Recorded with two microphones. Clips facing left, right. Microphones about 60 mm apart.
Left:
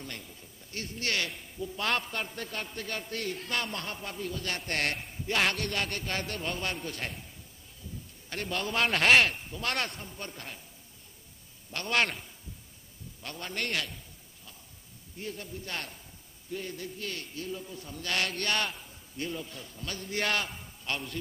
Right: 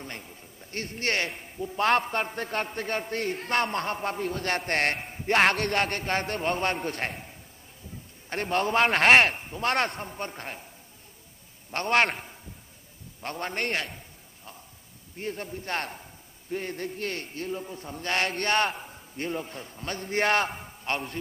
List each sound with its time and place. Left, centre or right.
0.0 s a man's voice: right
9.8 s speech: right
11.7 s a man's voice: right
13.2 s a man's voice: right
13.8 s a sound: right
15.1 s a man's voice: right